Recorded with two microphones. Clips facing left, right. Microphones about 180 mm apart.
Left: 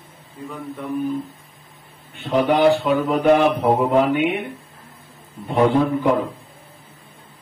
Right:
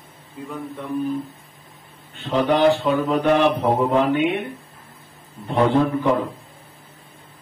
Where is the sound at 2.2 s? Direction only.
10° left (ahead or behind).